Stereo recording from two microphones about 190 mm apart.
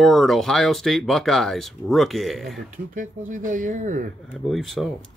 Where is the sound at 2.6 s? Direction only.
45° right (ahead or behind).